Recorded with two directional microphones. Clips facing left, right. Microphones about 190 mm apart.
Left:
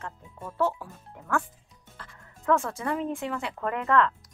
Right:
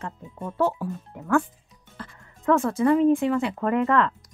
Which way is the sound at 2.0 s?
10° right (ahead or behind).